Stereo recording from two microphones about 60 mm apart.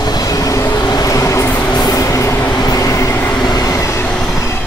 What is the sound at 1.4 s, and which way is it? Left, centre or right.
Train, left.